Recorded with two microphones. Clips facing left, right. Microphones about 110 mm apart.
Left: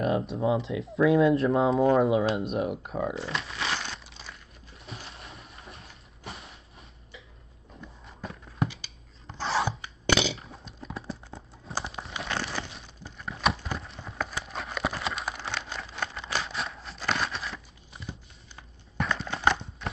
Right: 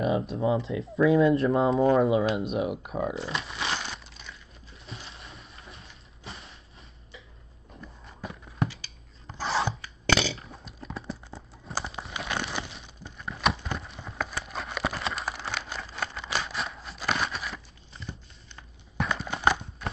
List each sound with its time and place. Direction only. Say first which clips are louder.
0.0 s speech: even; centre (ahead or behind)
2.8 s speech: even; 15° right (ahead or behind)
3.3 s crumpling: even; centre (ahead or behind)
4.9 s a sound: left 1 dB; 35° left (ahead or behind)
7.7 s a sound: even; centre (ahead or behind)
9.3 s filing: even; 5° right (ahead or behind)
9.7 s rub: even; 20° left (ahead or behind)
10.4 s clip-clop: even; centre (ahead or behind)
12.6 s a sound: even; centre (ahead or behind)
19.0 s clip-clop: even; 10° right (ahead or behind)